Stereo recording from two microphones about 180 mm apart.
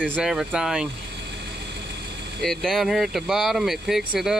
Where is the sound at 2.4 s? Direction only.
Centre (ahead or behind).